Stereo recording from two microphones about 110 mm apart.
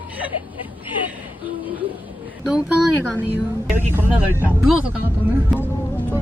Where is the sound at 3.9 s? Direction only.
20° right (ahead or behind).